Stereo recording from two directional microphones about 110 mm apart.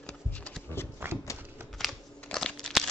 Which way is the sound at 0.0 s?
10° left (ahead or behind).